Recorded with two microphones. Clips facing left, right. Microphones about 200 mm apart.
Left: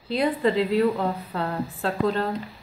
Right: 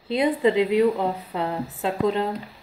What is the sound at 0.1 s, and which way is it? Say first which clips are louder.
A woman's voice: right 2 dB; 20° right (ahead or behind).